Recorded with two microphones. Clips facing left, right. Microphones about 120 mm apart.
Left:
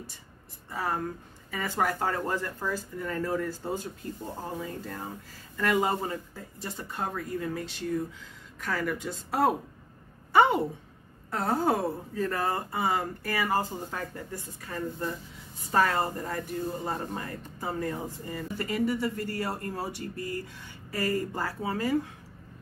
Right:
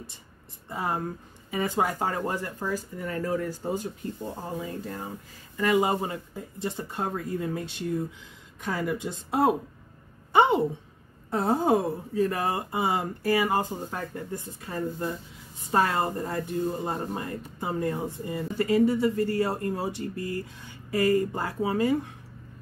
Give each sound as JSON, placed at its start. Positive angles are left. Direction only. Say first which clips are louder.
{"t": 0.7, "sound": "speech", "louder": "right 1 dB", "side_deg": -20}
{"t": 10.3, "sound": "a sound", "louder": "right 1 dB", "side_deg": -25}
{"t": 11.2, "sound": "speech", "louder": "right 3 dB", "side_deg": -20}